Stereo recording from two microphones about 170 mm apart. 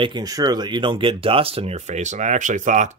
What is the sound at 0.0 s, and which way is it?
Speech, 25° right (ahead or behind).